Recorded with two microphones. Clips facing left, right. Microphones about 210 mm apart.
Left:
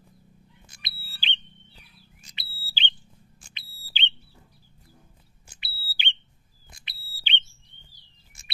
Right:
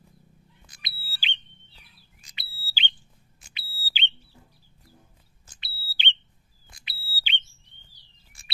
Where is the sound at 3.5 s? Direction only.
10° right (ahead or behind).